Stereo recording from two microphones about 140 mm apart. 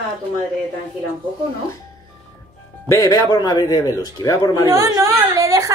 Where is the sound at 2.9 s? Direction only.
30° left (ahead or behind).